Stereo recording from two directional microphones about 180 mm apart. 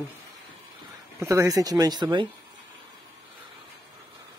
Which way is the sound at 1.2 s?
15° right (ahead or behind).